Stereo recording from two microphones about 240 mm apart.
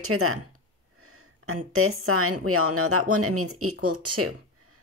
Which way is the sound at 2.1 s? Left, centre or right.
Right.